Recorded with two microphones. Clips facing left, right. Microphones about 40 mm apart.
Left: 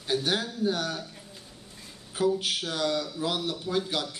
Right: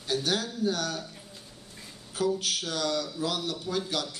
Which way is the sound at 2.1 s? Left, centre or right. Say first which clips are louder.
Left 2 dB; centre.